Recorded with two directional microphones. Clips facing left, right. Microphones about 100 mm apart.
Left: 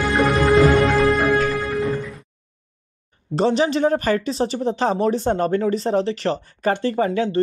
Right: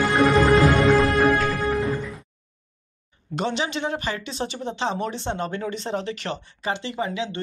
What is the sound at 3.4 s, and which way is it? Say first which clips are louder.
Speech: left 8 dB; 35° left (ahead or behind).